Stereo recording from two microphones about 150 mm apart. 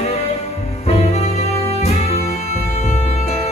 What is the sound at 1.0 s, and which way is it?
Music, 45° left (ahead or behind).